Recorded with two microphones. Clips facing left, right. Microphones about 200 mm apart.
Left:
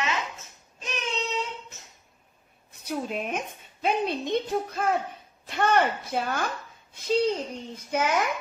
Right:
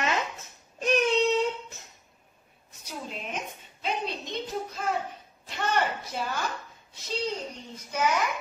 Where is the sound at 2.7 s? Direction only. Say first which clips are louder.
Left 8 dB; 60° left (ahead or behind).